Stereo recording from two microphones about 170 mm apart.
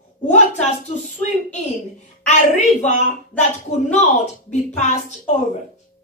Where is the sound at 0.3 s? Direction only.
45° left (ahead or behind).